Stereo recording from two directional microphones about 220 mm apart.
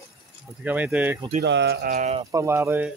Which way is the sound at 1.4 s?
50° right (ahead or behind).